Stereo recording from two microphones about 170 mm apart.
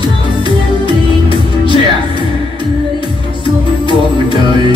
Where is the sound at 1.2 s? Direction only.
30° left (ahead or behind).